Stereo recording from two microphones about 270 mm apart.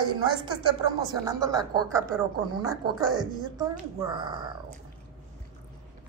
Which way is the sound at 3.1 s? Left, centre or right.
Centre.